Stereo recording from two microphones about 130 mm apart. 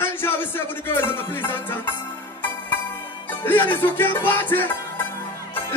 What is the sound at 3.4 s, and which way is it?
Speech, 15° left (ahead or behind).